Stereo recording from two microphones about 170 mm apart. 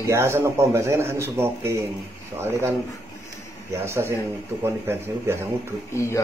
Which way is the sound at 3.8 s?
15° right (ahead or behind).